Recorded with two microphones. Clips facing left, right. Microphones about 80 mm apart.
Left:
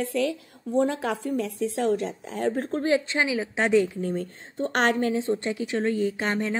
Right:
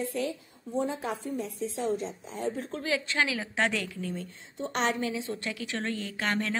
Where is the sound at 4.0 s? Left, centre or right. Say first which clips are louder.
Left 7 dB; left.